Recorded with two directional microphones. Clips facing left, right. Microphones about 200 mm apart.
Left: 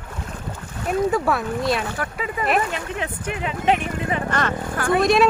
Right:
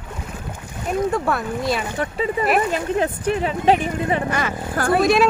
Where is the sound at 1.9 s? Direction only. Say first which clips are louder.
Right 5 dB; 25° right (ahead or behind).